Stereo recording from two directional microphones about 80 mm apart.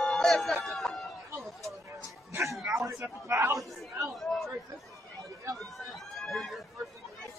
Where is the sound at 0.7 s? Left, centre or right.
Centre.